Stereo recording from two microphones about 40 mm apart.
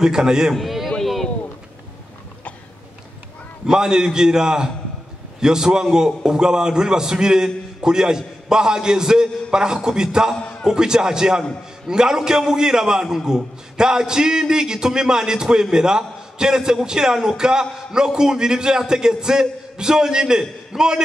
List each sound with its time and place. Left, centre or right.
0.0 s a man's voice: centre
0.6 s a sound: centre
3.6 s a man's voice: centre